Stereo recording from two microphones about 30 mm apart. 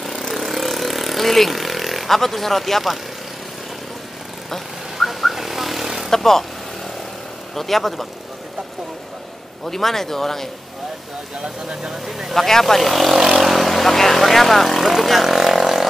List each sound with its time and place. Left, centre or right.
0.0 s vehicle: centre
4.5 s vehicle: centre
6.0 s speech: centre
7.5 s speech: centre
9.7 s speech: centre
11.4 s speech: right
12.1 s speech: centre
12.4 s speech: centre
15.0 s vehicle: centre